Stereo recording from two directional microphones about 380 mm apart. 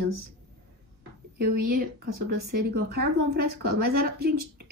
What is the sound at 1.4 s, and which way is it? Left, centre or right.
Speech, right.